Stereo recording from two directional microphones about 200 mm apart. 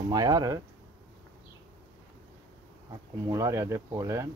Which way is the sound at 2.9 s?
20° right (ahead or behind).